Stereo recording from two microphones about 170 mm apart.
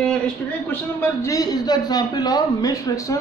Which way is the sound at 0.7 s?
15° left (ahead or behind).